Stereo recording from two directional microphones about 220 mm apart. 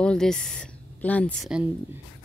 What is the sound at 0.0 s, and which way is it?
Speech, 5° left (ahead or behind).